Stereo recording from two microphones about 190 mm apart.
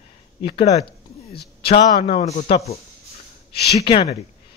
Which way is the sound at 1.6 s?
30° left (ahead or behind).